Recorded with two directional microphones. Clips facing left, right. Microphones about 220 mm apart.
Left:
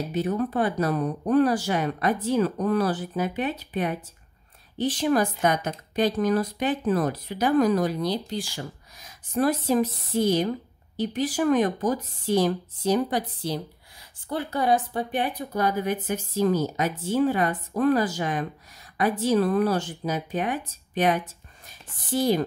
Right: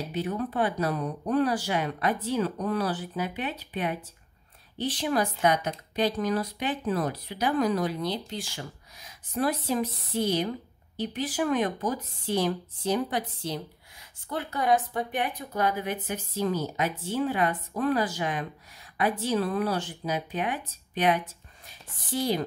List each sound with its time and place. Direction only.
0.1 s speech: 45° left (ahead or behind)
8.5 s speech: 45° left (ahead or behind)